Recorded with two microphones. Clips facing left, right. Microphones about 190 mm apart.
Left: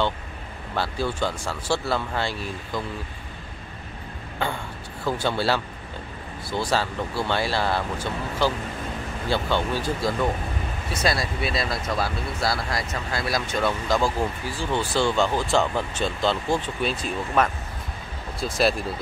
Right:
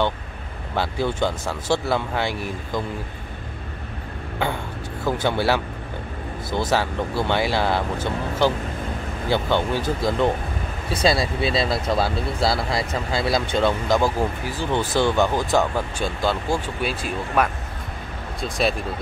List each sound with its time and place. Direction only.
0.7 s speech: 20° right (ahead or behind)
5.0 s speech: 15° right (ahead or behind)
10.9 s speech: 30° right (ahead or behind); by 18.9 s centre (ahead or behind)